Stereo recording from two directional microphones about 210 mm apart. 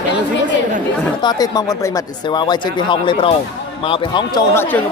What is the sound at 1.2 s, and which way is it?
Speech, 20° left (ahead or behind).